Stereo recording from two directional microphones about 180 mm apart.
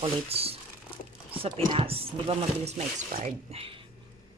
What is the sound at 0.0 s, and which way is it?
Speech, 35° right (ahead or behind).